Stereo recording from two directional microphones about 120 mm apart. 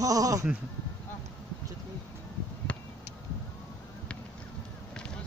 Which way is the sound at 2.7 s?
10° left (ahead or behind).